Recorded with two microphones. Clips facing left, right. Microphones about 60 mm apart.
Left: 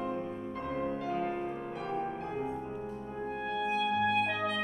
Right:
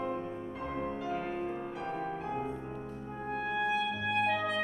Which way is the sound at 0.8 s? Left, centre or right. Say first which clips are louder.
Left 2 dB; centre.